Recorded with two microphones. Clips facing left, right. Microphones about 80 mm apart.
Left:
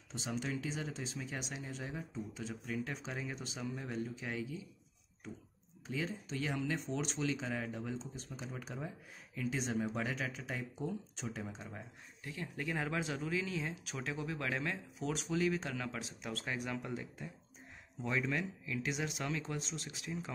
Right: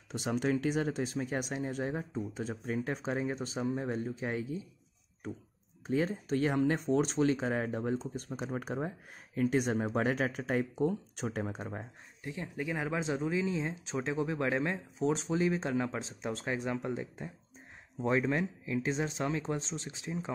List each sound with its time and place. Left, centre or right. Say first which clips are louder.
0.1 s speech: right 8 dB; right
5.9 s speech: right 9 dB; right
12.2 s speech: right 5 dB; right